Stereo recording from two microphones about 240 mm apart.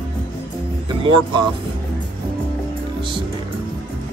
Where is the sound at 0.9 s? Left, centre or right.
Centre.